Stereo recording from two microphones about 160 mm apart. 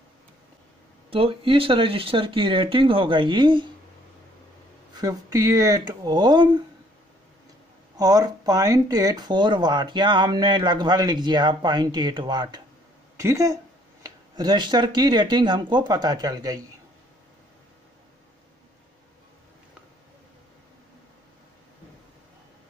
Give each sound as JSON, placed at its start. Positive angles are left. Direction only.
{"t": 1.1, "sound": "speech", "side_deg": -35}
{"t": 5.0, "sound": "speech", "side_deg": -20}
{"t": 8.0, "sound": "speech", "side_deg": -25}